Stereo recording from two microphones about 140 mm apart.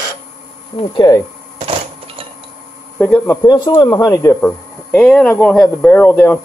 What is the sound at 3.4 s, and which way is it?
Speech, 30° left (ahead or behind).